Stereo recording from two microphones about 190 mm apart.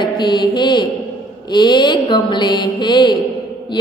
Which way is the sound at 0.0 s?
25° left (ahead or behind).